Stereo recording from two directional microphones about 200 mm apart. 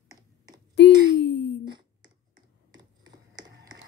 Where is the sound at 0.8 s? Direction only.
65° left (ahead or behind).